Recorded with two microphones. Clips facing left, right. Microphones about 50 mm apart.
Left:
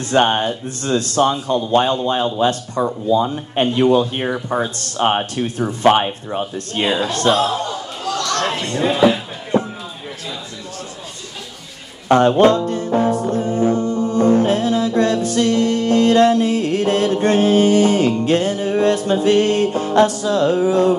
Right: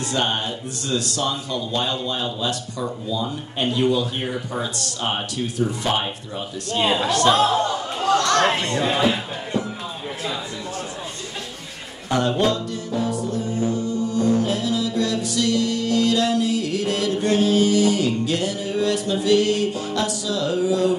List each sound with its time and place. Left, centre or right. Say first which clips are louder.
0.1 s speech: left 10 dB; left
7.3 s speech: even; right
8.0 s speech: right 3 dB; right
9.5 s a sound: left 8 dB; left
12.1 s music: left 8 dB; left